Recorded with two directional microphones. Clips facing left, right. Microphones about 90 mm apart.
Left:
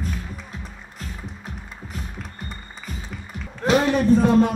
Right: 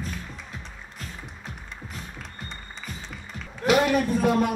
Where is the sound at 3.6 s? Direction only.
30° left (ahead or behind).